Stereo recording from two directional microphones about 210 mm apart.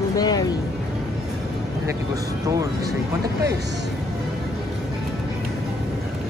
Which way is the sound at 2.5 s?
15° right (ahead or behind).